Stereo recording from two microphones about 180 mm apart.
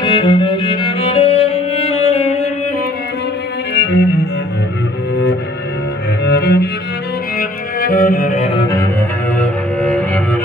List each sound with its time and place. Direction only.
0.0 s music: 30° left (ahead or behind)
3.7 s cello: 80° left
6.2 s cello: 70° left (ahead or behind)
7.3 s music: 55° left (ahead or behind)
8.5 s music: 25° left (ahead or behind)
9.4 s cello: 5° left (ahead or behind)